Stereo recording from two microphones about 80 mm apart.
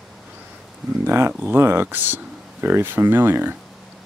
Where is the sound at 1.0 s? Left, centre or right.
Right.